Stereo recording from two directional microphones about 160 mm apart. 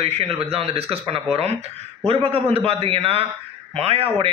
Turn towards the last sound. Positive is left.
turn(degrees=-35)  # may be behind; listen again after turning